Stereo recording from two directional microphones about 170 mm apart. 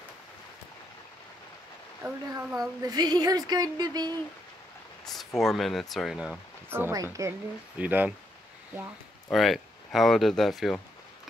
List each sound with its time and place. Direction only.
2.0 s speech: centre (ahead or behind)
2.8 s speech: 25° right (ahead or behind)
5.0 s speech: centre (ahead or behind)
6.7 s speech: 15° right (ahead or behind)
9.3 s speech: centre (ahead or behind)